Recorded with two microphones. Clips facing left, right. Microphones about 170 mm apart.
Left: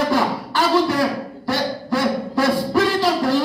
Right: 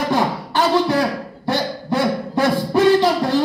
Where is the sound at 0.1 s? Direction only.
20° right (ahead or behind).